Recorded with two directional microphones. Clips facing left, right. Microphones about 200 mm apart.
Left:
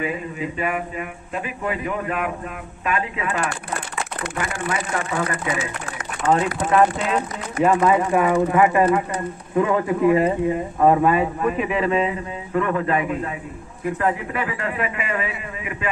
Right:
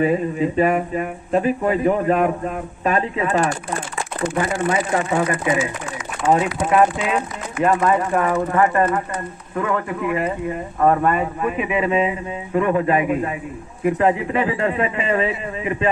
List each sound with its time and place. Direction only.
0.0 s speech: 35° right (ahead or behind)
5.1 s a man's voice: 25° right (ahead or behind)
6.3 s a man's voice: 15° right (ahead or behind)
7.6 s speech: 5° left (ahead or behind); by 9.9 s 20° left (ahead or behind)
10.0 s speech: 35° left (ahead or behind)
10.8 s a man's voice: 10° left (ahead or behind); by 15.9 s 30° right (ahead or behind)